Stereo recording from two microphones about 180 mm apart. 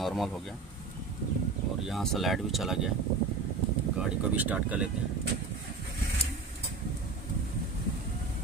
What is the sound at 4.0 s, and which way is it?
Speech, 5° right (ahead or behind).